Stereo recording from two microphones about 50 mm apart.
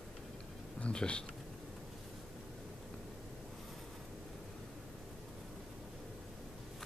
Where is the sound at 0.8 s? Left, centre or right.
Left.